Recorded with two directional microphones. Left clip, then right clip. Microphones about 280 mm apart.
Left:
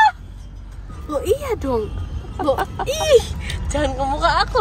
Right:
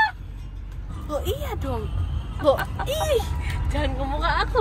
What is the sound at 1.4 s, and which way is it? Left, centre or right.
Speech, centre.